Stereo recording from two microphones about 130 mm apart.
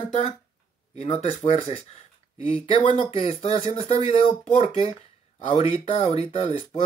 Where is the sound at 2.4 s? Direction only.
45° left (ahead or behind).